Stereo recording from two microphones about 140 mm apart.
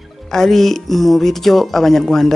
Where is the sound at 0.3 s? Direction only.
5° left (ahead or behind).